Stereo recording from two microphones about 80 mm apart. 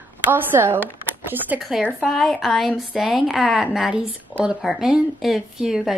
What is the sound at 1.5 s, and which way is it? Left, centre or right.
A woman's voice, centre.